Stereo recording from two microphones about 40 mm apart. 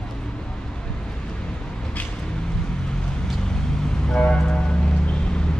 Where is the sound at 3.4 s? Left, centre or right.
Centre.